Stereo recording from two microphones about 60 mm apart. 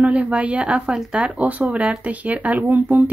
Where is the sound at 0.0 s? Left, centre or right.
Right.